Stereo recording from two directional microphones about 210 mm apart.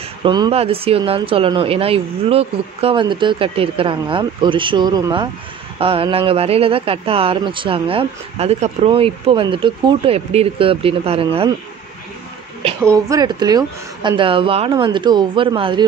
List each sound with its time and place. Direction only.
0.2 s speech: 20° right (ahead or behind)
12.8 s speech: 15° right (ahead or behind)